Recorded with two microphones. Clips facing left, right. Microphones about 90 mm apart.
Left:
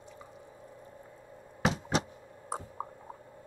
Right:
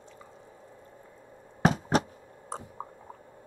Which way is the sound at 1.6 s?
45° right (ahead or behind).